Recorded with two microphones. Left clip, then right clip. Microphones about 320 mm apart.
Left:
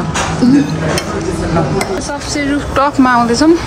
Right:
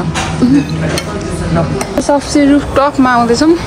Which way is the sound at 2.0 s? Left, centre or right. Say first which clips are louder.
Right 7 dB; centre.